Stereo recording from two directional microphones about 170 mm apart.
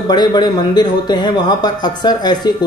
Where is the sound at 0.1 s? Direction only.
25° left (ahead or behind).